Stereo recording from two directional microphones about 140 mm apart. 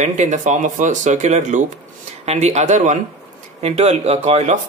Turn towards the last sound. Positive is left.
turn(degrees=-50)  # may be behind; listen again after turning